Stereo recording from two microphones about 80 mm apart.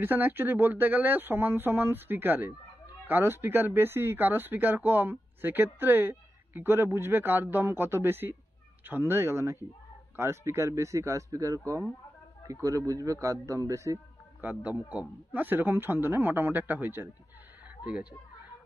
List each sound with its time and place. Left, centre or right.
0.0 s a man's voice: right
14.4 s speech: right